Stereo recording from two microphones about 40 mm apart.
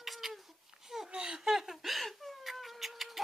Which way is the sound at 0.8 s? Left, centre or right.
Centre.